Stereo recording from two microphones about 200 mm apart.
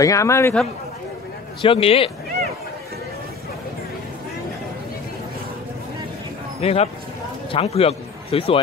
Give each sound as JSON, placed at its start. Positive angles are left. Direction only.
{"t": 0.0, "sound": "a man's voice", "side_deg": 15}
{"t": 1.6, "sound": "a man's voice", "side_deg": 25}
{"t": 6.6, "sound": "a man's voice", "side_deg": 30}